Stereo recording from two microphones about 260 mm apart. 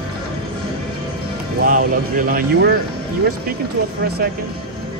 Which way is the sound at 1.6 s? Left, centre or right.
Right.